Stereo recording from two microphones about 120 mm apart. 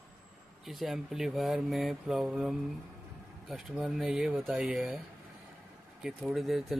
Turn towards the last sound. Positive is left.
turn(degrees=0)  # may be behind; listen again after turning